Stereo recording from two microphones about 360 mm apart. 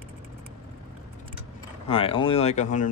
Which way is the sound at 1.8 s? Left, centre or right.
Centre.